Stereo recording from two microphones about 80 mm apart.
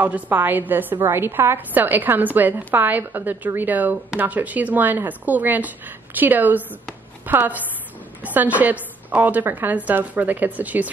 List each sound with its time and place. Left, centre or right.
0.0 s a woman's voice: right